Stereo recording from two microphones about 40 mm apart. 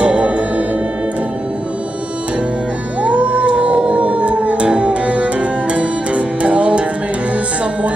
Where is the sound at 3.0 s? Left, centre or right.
Right.